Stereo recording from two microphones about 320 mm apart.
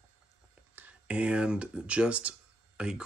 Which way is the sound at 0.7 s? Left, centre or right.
Centre.